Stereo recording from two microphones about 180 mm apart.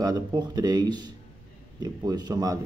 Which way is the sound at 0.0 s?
20° right (ahead or behind).